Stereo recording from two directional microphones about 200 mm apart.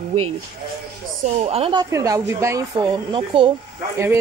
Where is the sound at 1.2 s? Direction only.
30° right (ahead or behind).